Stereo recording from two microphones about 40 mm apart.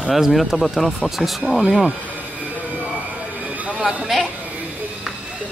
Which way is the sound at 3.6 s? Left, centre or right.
Right.